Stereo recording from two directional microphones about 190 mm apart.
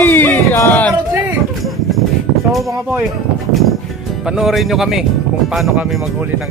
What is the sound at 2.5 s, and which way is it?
Speech, centre (ahead or behind).